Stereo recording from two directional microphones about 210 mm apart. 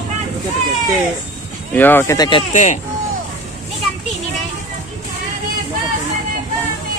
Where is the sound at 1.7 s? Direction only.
10° left (ahead or behind); by 2.7 s 30° left (ahead or behind).